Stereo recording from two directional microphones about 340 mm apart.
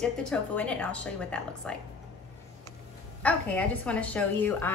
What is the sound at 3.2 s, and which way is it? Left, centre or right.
Speech, centre.